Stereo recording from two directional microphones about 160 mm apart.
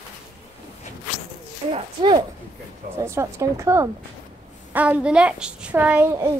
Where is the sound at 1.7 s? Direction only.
30° right (ahead or behind).